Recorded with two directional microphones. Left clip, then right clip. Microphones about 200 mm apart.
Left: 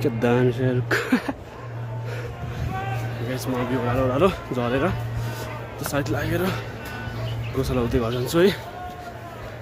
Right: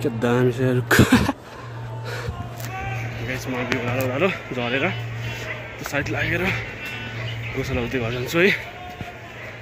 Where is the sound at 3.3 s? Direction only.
15° left (ahead or behind).